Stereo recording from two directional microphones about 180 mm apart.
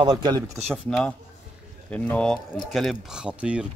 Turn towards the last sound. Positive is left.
turn(degrees=-5)  # may be behind; listen again after turning